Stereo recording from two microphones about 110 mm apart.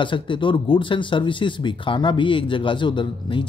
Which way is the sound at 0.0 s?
45° left (ahead or behind).